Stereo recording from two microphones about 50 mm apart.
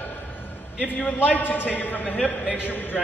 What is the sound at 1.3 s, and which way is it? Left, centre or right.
A man's voice, left.